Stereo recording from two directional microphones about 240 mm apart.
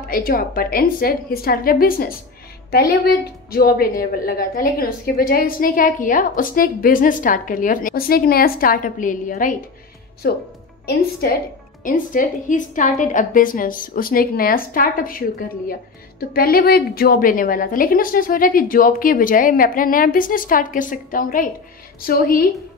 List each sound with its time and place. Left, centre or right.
0.1 s a woman's voice: left